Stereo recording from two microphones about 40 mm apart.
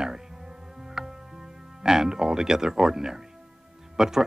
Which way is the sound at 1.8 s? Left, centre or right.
Centre.